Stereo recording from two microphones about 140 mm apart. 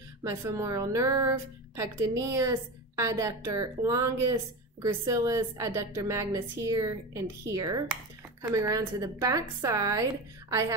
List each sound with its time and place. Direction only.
0.2 s a woman's voice: 25° right (ahead or behind)